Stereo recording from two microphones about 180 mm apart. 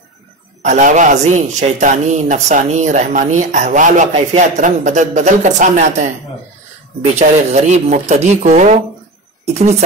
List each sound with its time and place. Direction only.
0.6 s a man's voice: 40° right (ahead or behind)
7.2 s speech: 40° right (ahead or behind)